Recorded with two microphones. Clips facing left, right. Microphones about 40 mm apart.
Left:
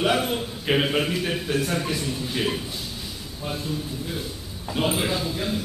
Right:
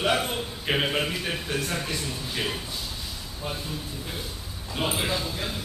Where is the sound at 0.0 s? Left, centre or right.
Centre.